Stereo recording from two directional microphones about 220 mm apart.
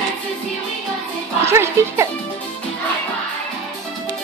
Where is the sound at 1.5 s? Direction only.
10° right (ahead or behind).